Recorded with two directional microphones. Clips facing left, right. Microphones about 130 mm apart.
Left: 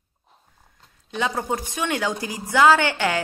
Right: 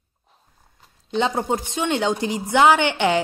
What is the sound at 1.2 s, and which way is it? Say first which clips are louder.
A woman's voice: right 3 dB; 25° right (ahead or behind).